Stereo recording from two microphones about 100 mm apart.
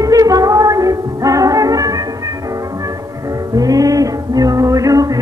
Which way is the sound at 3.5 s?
35° right (ahead or behind).